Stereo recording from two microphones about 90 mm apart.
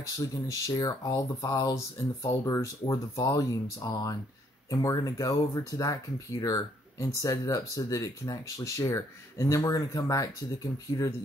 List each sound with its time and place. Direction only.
0.3 s speech: 40° left (ahead or behind)